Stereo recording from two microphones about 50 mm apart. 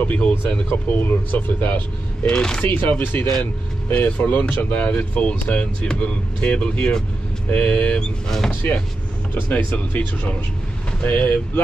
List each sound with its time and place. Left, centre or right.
0.0 s speech: left
0.7 s speech: left
2.2 s speech: centre
2.6 s speech: left
8.6 s speech: left